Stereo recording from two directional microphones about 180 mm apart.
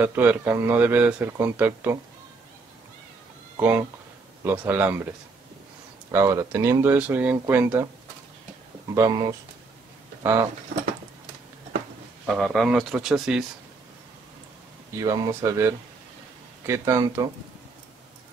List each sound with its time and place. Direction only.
0.0 s speech: 10° right (ahead or behind)
3.5 s speech: 10° right (ahead or behind)
6.1 s speech: 15° right (ahead or behind)
8.9 s speech: 15° right (ahead or behind)
12.3 s speech: centre (ahead or behind)
15.0 s speech: 20° right (ahead or behind)